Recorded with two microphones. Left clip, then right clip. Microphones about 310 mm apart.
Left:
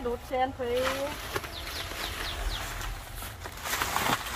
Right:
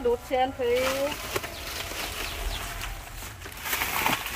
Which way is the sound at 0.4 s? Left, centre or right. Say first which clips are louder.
Even; right.